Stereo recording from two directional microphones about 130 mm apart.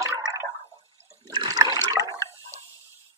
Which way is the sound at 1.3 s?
30° right (ahead or behind).